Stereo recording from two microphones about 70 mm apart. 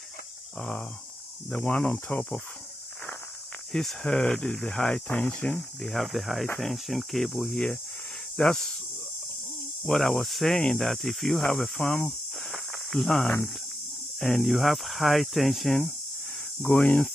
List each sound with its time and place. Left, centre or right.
0.6 s speech: centre
3.7 s speech: centre
5.0 s speech: left
5.6 s speech: centre
9.8 s speech: centre
16.7 s speech: centre